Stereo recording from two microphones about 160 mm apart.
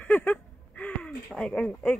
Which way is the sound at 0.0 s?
10° left (ahead or behind).